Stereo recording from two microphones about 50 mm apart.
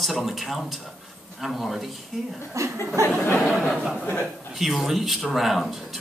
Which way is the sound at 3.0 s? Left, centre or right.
Right.